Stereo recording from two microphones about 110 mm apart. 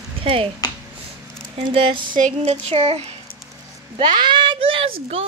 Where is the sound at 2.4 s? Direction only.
85° right.